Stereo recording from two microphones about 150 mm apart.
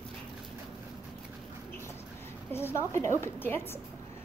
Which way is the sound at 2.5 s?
15° left (ahead or behind).